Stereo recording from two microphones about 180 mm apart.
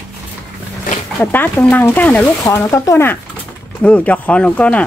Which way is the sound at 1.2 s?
10° left (ahead or behind).